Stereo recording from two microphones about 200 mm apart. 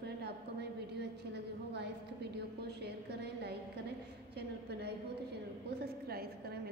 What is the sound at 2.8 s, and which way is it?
A woman's voice, 55° right (ahead or behind).